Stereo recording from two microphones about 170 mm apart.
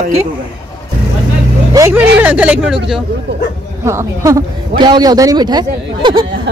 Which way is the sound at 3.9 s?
15° right (ahead or behind).